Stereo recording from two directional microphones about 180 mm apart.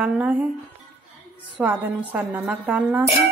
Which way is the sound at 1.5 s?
10° right (ahead or behind).